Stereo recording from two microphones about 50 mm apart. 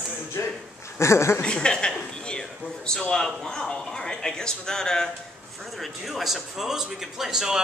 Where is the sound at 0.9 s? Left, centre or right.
Left.